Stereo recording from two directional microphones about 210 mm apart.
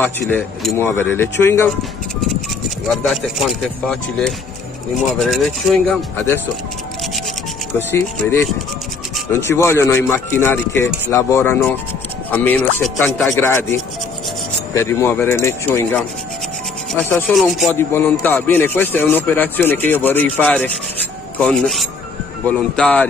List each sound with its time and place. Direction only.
0.0 s a man's voice: 10° left (ahead or behind)
2.9 s speech: centre (ahead or behind)
7.9 s a man's voice: 10° left (ahead or behind)
17.7 s a man's voice: 10° left (ahead or behind)